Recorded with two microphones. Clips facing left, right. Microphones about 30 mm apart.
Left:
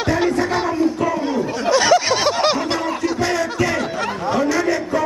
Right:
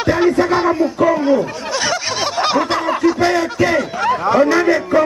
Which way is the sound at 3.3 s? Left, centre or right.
Centre.